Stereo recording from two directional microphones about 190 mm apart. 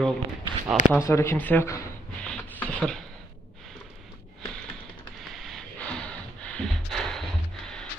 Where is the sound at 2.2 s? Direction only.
5° left (ahead or behind).